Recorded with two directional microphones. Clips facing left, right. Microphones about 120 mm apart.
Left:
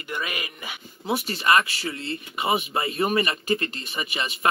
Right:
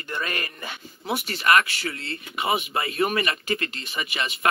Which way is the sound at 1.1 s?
30° left (ahead or behind).